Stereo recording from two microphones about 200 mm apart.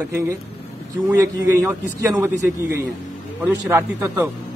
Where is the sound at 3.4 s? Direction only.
10° right (ahead or behind).